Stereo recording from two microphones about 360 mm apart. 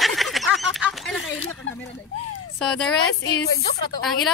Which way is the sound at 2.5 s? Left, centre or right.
Centre.